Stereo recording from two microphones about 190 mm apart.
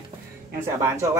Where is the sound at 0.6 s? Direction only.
15° right (ahead or behind).